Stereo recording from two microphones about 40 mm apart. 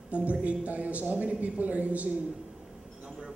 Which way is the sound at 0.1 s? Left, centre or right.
Right.